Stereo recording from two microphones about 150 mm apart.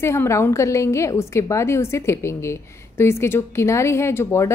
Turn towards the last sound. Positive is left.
turn(degrees=15)  # may be behind; listen again after turning